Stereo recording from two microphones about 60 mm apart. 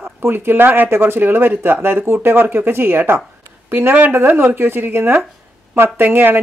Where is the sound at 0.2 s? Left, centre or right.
Right.